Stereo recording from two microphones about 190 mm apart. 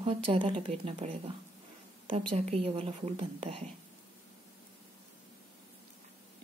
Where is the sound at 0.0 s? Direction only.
30° right (ahead or behind).